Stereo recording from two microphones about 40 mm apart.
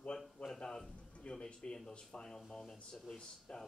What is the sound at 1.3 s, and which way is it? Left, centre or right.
Speech, centre.